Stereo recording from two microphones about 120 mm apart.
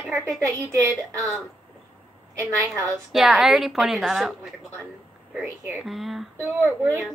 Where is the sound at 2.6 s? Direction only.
25° right (ahead or behind).